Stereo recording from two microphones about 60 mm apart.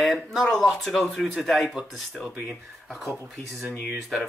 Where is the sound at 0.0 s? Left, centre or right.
Centre.